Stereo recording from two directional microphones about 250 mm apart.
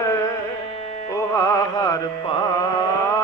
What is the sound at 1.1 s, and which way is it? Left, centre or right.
Music, centre.